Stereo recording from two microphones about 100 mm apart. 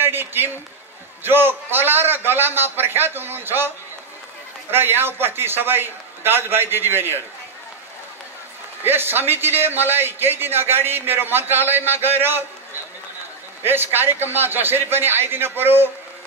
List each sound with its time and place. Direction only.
0.0 s a sound: 20° right (ahead or behind)
1.2 s a man's voice: 20° right (ahead or behind)
8.8 s a man's voice: 20° right (ahead or behind)
13.7 s a man's voice: 20° right (ahead or behind)